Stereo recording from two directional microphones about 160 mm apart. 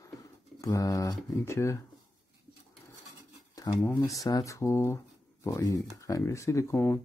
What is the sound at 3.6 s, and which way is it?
Speech, 20° left (ahead or behind).